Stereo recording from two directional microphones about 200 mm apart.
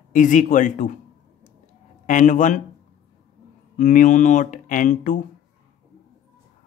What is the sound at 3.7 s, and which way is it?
Speech, 40° left (ahead or behind).